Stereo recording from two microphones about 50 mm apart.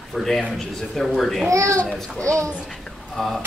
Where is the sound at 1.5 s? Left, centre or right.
Right.